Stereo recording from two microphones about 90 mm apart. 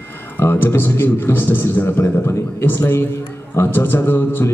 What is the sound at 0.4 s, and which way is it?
A man's voice, 25° left (ahead or behind).